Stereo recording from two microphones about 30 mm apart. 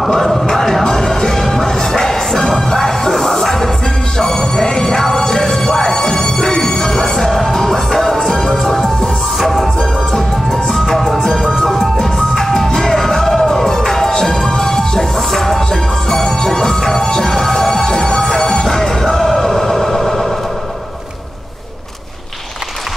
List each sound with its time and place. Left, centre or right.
0.5 s music: centre
10.1 s music: centre